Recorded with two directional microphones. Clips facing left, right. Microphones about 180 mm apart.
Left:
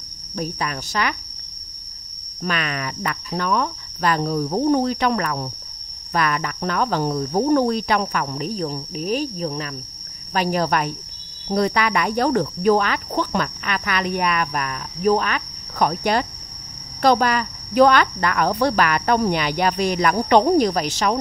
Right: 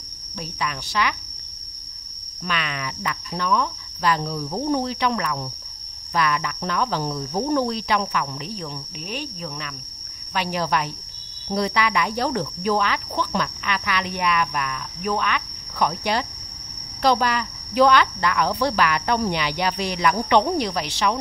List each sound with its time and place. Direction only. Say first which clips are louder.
0.4 s cricket: left 3 dB; 45° left (ahead or behind)
2.4 s cricket: left 3 dB; 45° left (ahead or behind)